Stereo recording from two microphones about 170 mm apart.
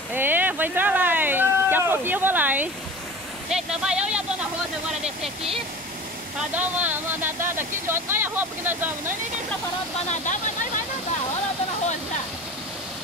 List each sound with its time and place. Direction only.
0.1 s speech: 10° right (ahead or behind)
6.5 s speech: 10° right (ahead or behind)
10.0 s speech: 45° left (ahead or behind)